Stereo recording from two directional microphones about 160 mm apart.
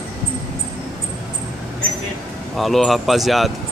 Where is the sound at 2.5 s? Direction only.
Centre (ahead or behind).